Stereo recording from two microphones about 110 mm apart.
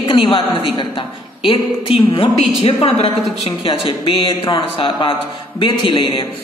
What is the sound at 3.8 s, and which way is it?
Speech, 50° left (ahead or behind).